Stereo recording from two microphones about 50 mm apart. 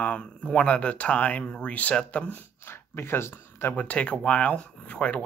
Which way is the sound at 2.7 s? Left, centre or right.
Left.